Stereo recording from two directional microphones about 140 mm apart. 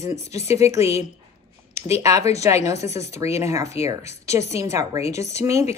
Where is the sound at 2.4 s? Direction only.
20° right (ahead or behind).